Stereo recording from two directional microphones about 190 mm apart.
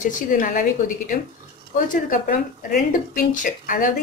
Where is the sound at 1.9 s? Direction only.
45° left (ahead or behind).